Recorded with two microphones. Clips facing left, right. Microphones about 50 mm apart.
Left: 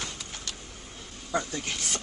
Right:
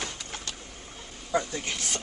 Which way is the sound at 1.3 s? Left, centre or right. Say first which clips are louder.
Right 2 dB; centre.